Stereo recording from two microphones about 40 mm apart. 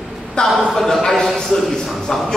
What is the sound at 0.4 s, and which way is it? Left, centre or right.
Speech, left.